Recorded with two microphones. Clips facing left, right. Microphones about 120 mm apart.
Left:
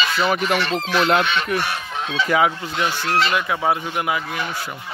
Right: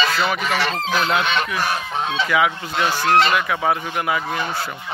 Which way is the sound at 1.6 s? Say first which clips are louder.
Right 3 dB; 35° right (ahead or behind).